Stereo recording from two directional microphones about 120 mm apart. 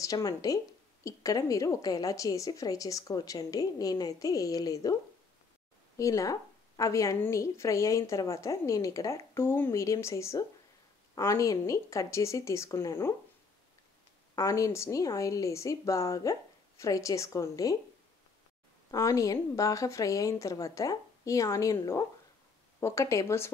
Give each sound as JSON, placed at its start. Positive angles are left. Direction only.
{"t": 0.0, "sound": "a woman's voice", "side_deg": 30}
{"t": 5.9, "sound": "a woman's voice", "side_deg": 25}
{"t": 14.3, "sound": "a woman's voice", "side_deg": 25}
{"t": 18.9, "sound": "a woman's voice", "side_deg": 30}